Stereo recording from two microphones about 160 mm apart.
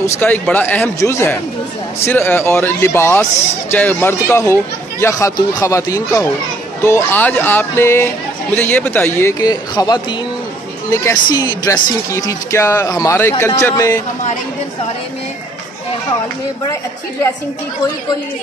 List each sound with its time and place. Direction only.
0.0 s a man's voice: 10° left (ahead or behind)